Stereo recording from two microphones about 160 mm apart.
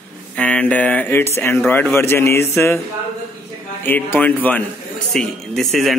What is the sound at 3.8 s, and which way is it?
A man's voice, 10° left (ahead or behind).